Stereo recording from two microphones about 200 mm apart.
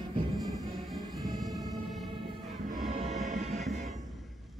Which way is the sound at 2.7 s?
35° right (ahead or behind).